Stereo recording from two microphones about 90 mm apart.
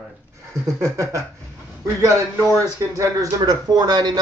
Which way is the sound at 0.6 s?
35° right (ahead or behind).